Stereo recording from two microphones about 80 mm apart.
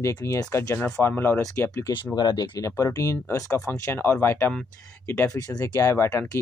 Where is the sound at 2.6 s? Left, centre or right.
Left.